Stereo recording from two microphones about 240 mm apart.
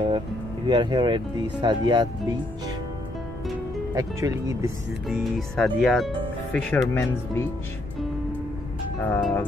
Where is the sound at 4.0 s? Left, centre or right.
Centre.